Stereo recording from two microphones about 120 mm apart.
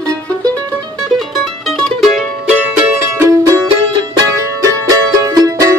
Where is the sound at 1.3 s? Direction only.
Centre (ahead or behind).